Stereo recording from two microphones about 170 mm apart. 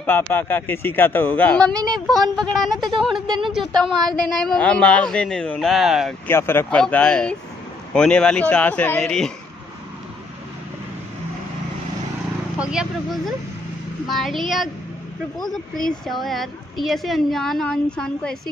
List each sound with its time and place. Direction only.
0.3 s a woman's voice: 10° left (ahead or behind)
3.3 s speech: 30° right (ahead or behind)
3.5 s a woman's voice: centre (ahead or behind)
6.2 s a woman's voice: 15° left (ahead or behind)
12.5 s a woman's voice: 5° right (ahead or behind)